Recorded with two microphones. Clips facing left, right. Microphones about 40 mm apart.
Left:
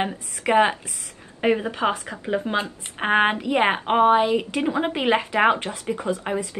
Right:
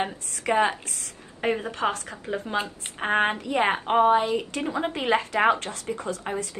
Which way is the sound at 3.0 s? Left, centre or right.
Left.